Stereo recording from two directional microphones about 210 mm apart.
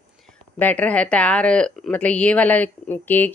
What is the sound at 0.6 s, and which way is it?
Speech, 5° left (ahead or behind).